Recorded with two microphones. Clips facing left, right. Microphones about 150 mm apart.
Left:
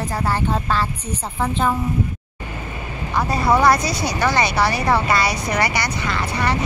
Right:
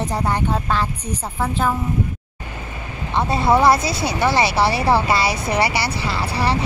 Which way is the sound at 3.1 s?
25° right (ahead or behind).